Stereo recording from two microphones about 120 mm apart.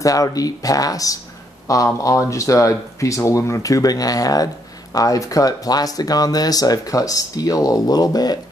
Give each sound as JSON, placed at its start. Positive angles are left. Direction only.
{"t": 0.0, "sound": "speech", "side_deg": 30}